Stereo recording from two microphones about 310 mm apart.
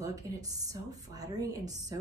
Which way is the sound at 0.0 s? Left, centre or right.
Centre.